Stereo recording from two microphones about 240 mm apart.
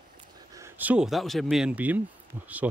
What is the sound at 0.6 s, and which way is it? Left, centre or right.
Speech, centre.